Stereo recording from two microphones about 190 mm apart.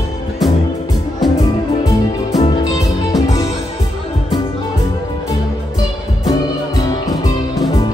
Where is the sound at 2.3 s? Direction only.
20° left (ahead or behind).